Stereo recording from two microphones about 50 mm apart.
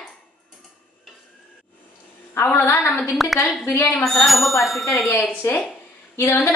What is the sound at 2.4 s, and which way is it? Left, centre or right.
Speech, left.